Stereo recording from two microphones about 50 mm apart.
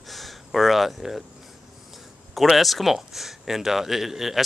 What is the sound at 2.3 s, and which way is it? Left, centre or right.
Speech, centre.